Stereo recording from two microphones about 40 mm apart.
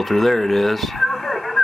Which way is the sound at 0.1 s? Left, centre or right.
Centre.